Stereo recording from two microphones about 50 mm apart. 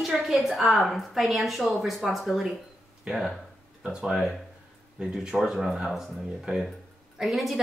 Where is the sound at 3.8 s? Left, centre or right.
Centre.